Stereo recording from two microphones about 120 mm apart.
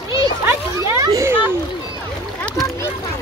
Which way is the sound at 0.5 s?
25° right (ahead or behind).